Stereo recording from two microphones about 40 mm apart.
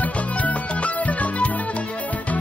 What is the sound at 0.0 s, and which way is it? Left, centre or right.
Music, left.